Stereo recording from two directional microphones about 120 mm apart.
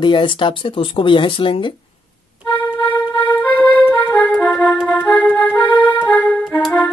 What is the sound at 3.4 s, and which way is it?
Music, 15° left (ahead or behind).